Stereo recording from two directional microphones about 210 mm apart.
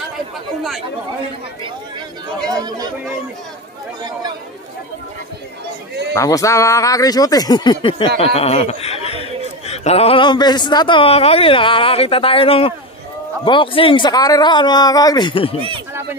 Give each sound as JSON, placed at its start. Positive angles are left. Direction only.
{"t": 2.5, "sound": "speech", "side_deg": -20}
{"t": 6.1, "sound": "a man's voice", "side_deg": 15}
{"t": 15.9, "sound": "a sound", "side_deg": -10}